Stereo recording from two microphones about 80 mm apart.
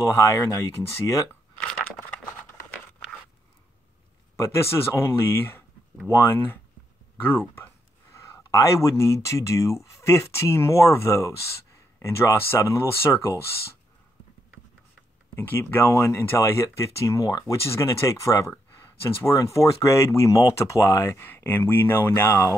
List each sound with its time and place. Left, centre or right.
0.1 s speech: left
4.4 s speech: left
8.1 s speech: left
15.3 s speech: left
19.3 s speech: left